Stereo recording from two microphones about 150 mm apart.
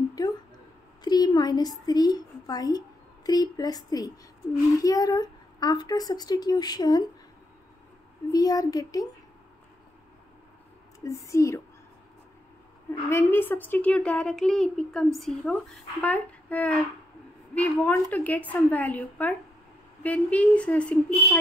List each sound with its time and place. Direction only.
0.2 s a sound: 25° left (ahead or behind)
1.0 s a woman's voice: 25° left (ahead or behind)
8.3 s a woman's voice: 25° left (ahead or behind)
11.1 s a woman's voice: 20° left (ahead or behind)
13.1 s a woman's voice: 15° left (ahead or behind)